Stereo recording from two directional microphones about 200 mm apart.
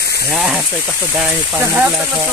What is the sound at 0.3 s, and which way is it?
Speech, centre (ahead or behind).